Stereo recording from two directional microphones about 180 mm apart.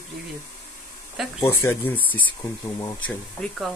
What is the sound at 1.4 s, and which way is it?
Speech, 15° left (ahead or behind).